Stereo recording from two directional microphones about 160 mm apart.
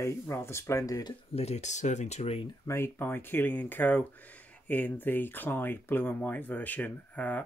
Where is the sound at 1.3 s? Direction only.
40° left (ahead or behind).